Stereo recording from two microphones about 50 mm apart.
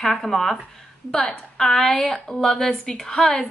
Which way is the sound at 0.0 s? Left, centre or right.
Centre.